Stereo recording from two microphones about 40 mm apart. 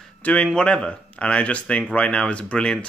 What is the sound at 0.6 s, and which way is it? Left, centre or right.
Speech, centre.